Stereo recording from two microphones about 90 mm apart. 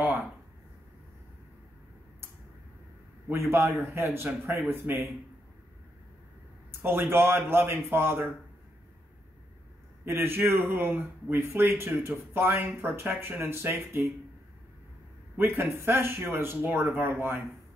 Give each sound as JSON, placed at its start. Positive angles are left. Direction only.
{"t": 3.3, "sound": "speech", "side_deg": -25}
{"t": 6.8, "sound": "speech", "side_deg": -25}
{"t": 10.0, "sound": "speech", "side_deg": -25}
{"t": 15.3, "sound": "speech", "side_deg": -25}